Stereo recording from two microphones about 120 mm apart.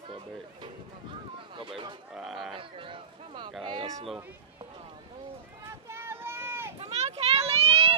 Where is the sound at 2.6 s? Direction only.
45° right (ahead or behind).